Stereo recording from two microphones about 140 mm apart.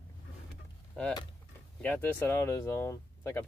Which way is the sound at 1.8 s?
15° left (ahead or behind).